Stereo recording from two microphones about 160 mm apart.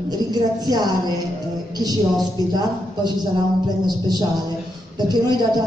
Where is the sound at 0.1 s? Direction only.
25° right (ahead or behind).